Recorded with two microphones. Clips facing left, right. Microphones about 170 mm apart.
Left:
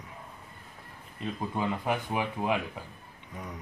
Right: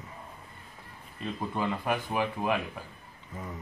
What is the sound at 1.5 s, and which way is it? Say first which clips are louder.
Speech: even; 15° left (ahead or behind).